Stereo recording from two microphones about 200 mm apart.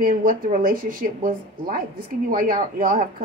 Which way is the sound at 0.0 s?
45° right (ahead or behind).